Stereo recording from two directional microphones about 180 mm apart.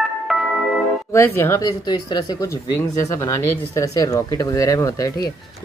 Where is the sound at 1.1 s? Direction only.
15° left (ahead or behind).